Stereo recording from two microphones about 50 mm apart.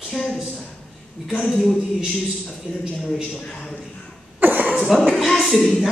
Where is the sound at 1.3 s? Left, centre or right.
Centre.